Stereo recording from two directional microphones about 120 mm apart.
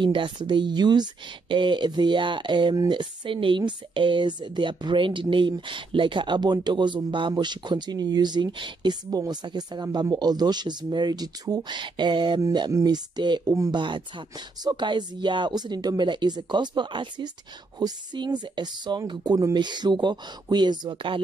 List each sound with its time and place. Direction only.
0.0 s speech: 40° right (ahead or behind)